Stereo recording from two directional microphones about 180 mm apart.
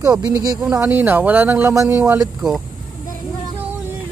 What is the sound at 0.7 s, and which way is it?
Speech, 15° right (ahead or behind).